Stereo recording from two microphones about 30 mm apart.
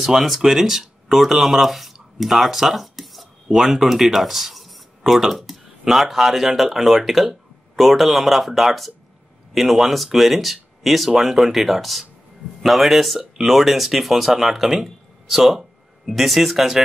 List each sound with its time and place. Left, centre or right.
0.0 s speech: centre
3.5 s speech: centre
3.8 s speech: centre